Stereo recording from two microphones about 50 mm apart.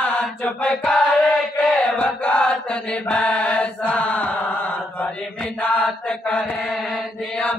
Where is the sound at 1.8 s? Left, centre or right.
Left.